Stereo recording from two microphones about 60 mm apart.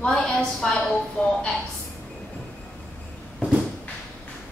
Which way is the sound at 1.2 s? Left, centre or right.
Left.